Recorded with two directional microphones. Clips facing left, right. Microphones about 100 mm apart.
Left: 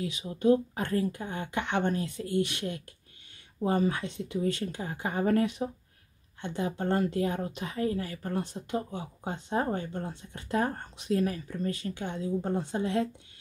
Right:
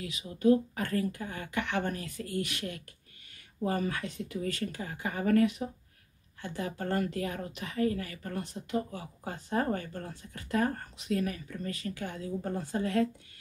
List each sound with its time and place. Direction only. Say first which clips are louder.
0.0 s a woman's voice: left 1 dB; 30° left (ahead or behind)